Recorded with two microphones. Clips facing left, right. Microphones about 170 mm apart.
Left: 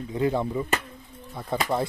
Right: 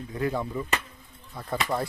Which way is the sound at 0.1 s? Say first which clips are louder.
Left 4 dB; 20° left (ahead or behind).